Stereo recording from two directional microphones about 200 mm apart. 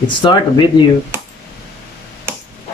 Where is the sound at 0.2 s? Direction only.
25° left (ahead or behind).